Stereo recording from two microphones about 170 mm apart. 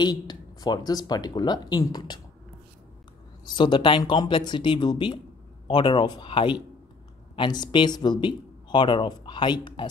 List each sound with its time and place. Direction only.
0.0 s speech: 25° left (ahead or behind)
3.4 s speech: 25° left (ahead or behind)